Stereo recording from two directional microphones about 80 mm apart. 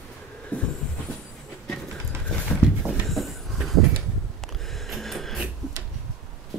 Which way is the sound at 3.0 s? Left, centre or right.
Centre.